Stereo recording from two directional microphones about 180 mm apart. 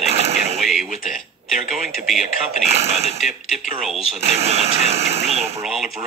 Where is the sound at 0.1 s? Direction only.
35° right (ahead or behind).